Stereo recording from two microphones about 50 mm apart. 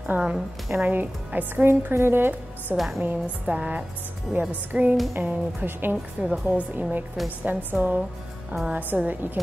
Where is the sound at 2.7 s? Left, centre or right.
Centre.